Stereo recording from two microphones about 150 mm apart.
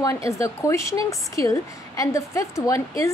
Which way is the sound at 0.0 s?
20° left (ahead or behind).